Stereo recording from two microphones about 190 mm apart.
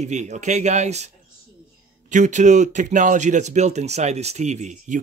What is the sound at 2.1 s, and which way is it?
Speech, 40° right (ahead or behind).